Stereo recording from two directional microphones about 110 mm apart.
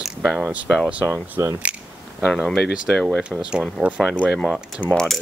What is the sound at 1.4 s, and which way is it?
Speech, 30° right (ahead or behind).